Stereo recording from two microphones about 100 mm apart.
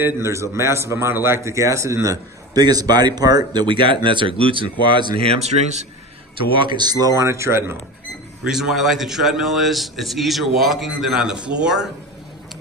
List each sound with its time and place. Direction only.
0.0 s a man's voice: 30° right (ahead or behind); by 5.1 s 55° right (ahead or behind)
5.2 s speech: 90° right
6.5 s a man's voice: 55° right (ahead or behind); by 7.7 s 25° right (ahead or behind)
8.5 s a man's voice: 5° right (ahead or behind)